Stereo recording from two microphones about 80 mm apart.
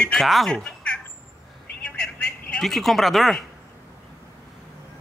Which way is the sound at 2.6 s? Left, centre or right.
Centre.